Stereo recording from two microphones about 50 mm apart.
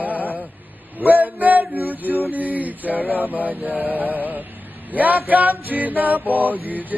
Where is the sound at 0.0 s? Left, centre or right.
Right.